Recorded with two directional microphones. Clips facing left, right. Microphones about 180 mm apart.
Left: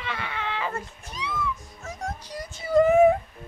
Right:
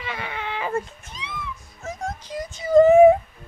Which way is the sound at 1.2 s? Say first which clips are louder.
Left 5 dB; 25° right (ahead or behind).